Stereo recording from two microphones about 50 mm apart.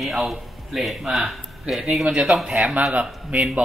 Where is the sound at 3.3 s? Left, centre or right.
Right.